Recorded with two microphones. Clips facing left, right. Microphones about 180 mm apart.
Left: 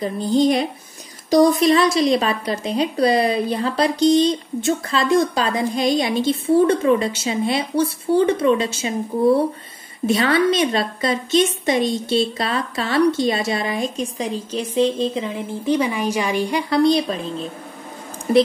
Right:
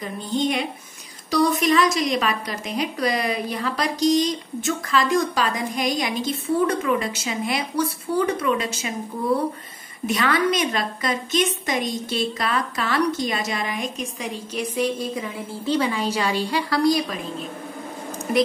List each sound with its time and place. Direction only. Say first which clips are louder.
0.0 s a woman's voice: left 7 dB; 35° left (ahead or behind)